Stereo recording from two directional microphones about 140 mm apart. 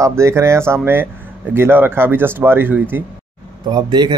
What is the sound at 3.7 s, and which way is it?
Speech, 30° right (ahead or behind).